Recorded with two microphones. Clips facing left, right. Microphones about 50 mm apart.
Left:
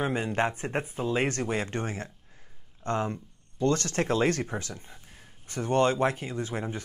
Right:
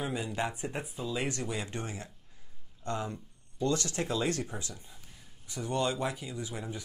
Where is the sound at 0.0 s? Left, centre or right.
Left.